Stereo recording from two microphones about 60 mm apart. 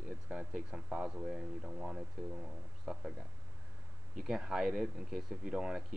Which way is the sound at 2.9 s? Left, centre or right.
Centre.